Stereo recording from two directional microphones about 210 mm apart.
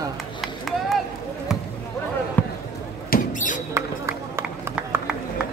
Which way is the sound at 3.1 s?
40° left (ahead or behind).